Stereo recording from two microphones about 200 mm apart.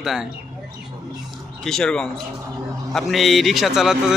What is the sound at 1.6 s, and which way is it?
A man's voice, 5° left (ahead or behind).